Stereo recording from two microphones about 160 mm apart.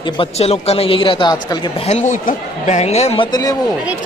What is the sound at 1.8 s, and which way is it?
Speech, 50° left (ahead or behind).